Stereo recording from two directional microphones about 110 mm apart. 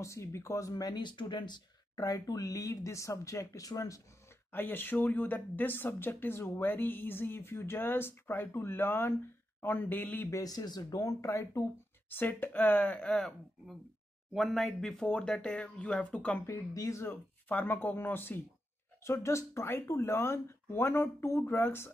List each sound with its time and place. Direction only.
0.0 s speech: 25° left (ahead or behind)
4.5 s speech: 20° left (ahead or behind)
10.3 s speech: 35° left (ahead or behind); by 16.4 s 10° left (ahead or behind)
16.4 s speech: 30° left (ahead or behind)